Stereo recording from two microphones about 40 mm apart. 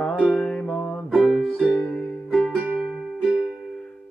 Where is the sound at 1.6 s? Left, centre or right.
Left.